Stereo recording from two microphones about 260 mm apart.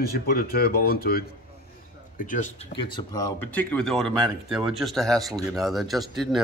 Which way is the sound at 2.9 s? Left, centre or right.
Centre.